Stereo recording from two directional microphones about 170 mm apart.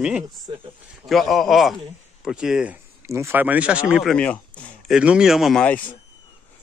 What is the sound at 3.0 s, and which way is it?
Speech, 15° right (ahead or behind).